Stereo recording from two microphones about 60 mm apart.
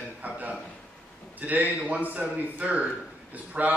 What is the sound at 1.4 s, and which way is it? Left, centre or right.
Speech, right.